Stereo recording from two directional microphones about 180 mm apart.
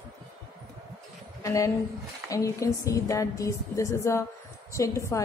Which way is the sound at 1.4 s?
15° left (ahead or behind).